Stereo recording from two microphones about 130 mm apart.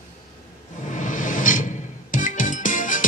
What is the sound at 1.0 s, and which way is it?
Music, 90° left.